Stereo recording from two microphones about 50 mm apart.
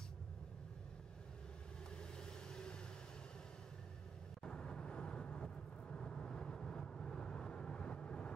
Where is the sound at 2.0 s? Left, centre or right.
Centre.